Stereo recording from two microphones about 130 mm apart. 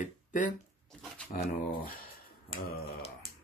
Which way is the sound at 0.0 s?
80° left.